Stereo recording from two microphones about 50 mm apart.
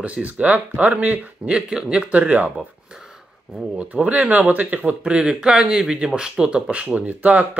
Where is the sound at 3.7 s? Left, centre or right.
Right.